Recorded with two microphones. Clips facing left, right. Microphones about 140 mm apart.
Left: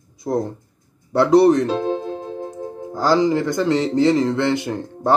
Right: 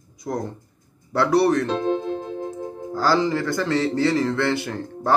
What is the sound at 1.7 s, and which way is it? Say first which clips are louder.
Music: left 1 dB; 35° left (ahead or behind).